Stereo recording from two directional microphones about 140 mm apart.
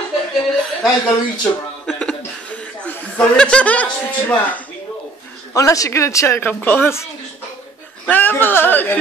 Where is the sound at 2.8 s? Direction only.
10° left (ahead or behind).